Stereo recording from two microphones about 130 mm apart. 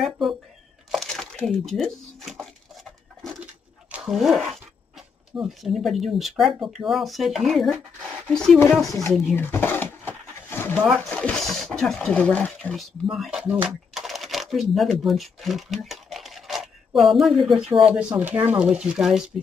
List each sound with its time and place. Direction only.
0.0 s speech: centre (ahead or behind)
0.9 s a sound: 5° left (ahead or behind)
3.9 s speech: centre (ahead or behind)
9.3 s a sound: 15° left (ahead or behind)
11.1 s speech: 5° left (ahead or behind)
13.1 s speech: centre (ahead or behind)